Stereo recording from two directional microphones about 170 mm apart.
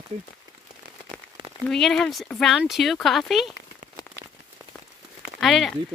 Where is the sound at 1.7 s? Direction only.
5° left (ahead or behind).